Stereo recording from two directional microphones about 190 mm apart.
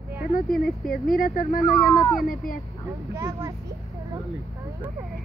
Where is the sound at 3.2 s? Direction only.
15° right (ahead or behind).